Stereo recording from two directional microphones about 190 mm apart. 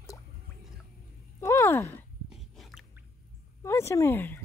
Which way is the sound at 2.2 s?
Centre (ahead or behind).